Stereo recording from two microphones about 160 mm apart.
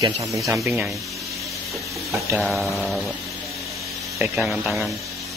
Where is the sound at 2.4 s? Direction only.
Centre (ahead or behind).